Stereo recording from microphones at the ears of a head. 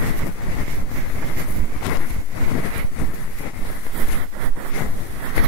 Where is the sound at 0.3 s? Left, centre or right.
Left.